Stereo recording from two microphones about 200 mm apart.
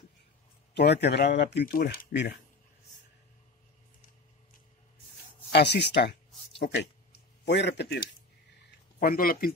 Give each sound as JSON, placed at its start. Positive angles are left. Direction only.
{"t": 0.7, "sound": "speech", "side_deg": 55}
{"t": 5.5, "sound": "speech", "side_deg": 60}